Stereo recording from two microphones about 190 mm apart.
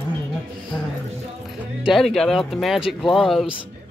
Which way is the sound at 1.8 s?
Centre (ahead or behind).